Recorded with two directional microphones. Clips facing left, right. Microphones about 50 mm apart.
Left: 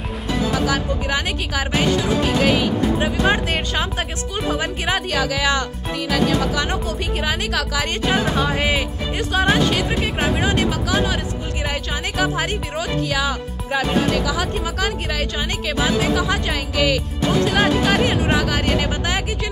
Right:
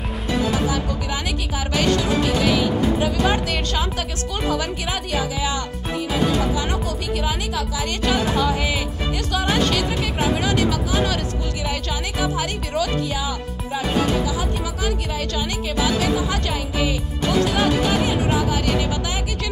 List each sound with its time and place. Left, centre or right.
2.2 s music: left
3.0 s speech: left
4.5 s music: left
5.1 s speech: left
6.7 s speech: left
7.8 s music: left
9.3 s speech: left
11.7 s music: left
13.1 s speech: left
16.7 s speech: left
17.5 s speech: left
18.7 s music: left